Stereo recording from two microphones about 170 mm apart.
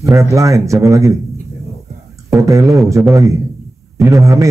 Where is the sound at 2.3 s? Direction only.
20° right (ahead or behind).